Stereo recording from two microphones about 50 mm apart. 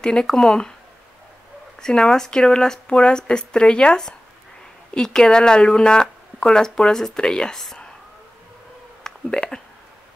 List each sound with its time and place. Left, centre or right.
0.0 s speech: centre
1.8 s speech: centre
9.0 s a sound: centre